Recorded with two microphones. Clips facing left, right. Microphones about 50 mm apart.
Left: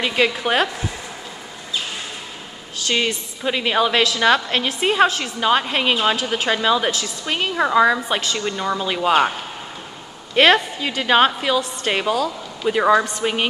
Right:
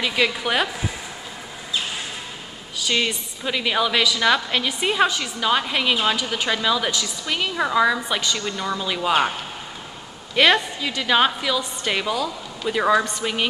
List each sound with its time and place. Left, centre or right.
0.0 s a woman's voice: centre
3.4 s a woman's voice: centre
10.3 s a woman's voice: centre